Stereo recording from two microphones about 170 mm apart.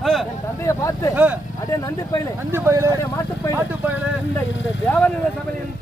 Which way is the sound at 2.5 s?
15° right (ahead or behind).